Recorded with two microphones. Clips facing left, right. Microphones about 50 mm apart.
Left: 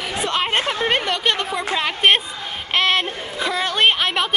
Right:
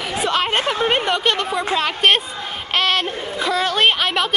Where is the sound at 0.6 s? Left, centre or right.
Centre.